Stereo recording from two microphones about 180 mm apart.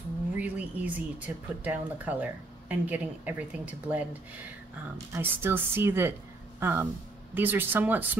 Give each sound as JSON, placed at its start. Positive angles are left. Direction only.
{"t": 0.4, "sound": "speech", "side_deg": -10}
{"t": 5.1, "sound": "speech", "side_deg": -10}